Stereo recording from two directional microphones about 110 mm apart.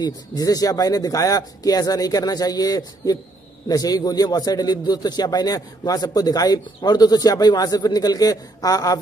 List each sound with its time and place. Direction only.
0.0 s a man's voice: 35° left (ahead or behind)